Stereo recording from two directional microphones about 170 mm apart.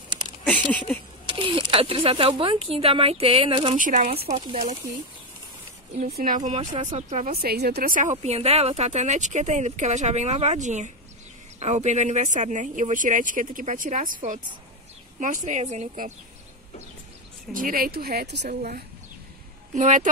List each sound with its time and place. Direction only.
0.5 s speech: 10° left (ahead or behind)
1.2 s speech: 30° right (ahead or behind)
3.7 s speech: 50° right (ahead or behind)
4.4 s speech: 30° right (ahead or behind)
6.1 s speech: 55° right (ahead or behind)
6.9 s speech: 45° right (ahead or behind)
7.4 s speech: 70° right (ahead or behind); by 16.1 s 40° right (ahead or behind)
17.5 s speech: 55° right (ahead or behind); by 18.5 s 80° right
18.5 s speech: 55° right (ahead or behind)